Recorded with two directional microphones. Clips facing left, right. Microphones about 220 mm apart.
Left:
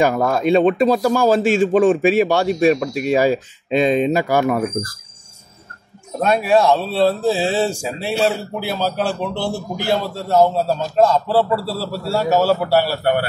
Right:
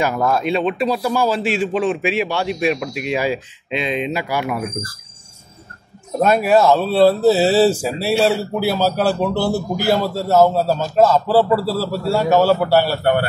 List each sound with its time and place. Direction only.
0.0 s speech: 45° left (ahead or behind)
6.2 s speech: centre (ahead or behind)